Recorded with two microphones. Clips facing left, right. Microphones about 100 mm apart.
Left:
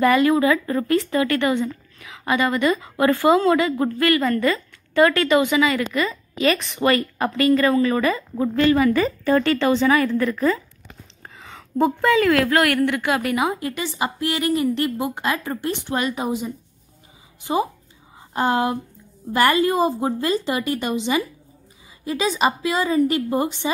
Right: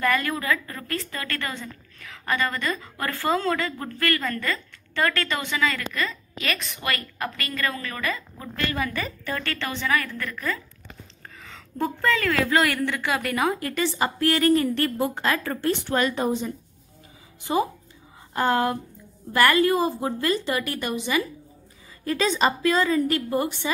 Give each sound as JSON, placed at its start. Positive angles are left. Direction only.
{"t": 0.0, "sound": "a woman's voice", "side_deg": 15}
{"t": 11.2, "sound": "a sound", "side_deg": 15}
{"t": 12.5, "sound": "speech", "side_deg": 15}
{"t": 16.2, "sound": "speech", "side_deg": 10}
{"t": 18.3, "sound": "a woman's voice", "side_deg": 20}